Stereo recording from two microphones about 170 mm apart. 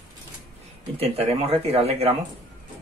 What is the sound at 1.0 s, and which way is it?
Speech, 35° right (ahead or behind).